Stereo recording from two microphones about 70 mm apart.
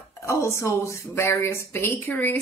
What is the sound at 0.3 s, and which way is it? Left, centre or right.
Speech, left.